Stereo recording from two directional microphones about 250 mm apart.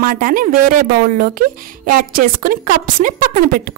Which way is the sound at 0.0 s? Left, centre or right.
Right.